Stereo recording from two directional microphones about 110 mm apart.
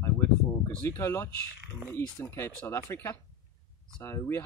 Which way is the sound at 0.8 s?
20° left (ahead or behind).